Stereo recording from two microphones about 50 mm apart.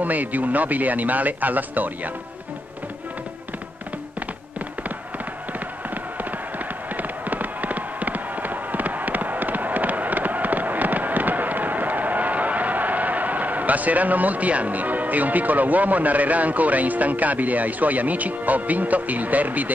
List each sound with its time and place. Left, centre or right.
0.0 s a man's voice: right
7.0 s fireworks: right